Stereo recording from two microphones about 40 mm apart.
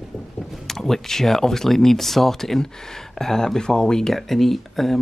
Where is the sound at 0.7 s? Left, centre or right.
Centre.